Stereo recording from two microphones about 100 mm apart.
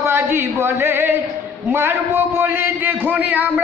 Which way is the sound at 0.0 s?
25° right (ahead or behind).